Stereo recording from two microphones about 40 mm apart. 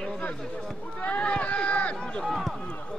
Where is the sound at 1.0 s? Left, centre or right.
Left.